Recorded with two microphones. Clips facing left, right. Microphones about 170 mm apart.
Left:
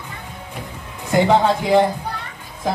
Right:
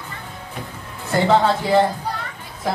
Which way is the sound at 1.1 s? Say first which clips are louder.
Left 1 dB; 15° left (ahead or behind).